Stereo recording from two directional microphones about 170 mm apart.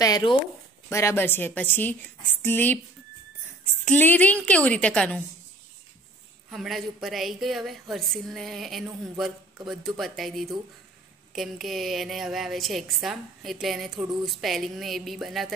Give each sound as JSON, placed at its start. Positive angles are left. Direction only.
{"t": 0.0, "sound": "a woman's voice", "side_deg": 25}
{"t": 3.8, "sound": "a woman's voice", "side_deg": 10}
{"t": 6.5, "sound": "a woman's voice", "side_deg": 0}